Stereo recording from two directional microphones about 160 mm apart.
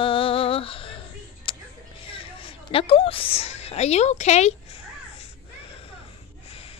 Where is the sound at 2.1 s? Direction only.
35° left (ahead or behind).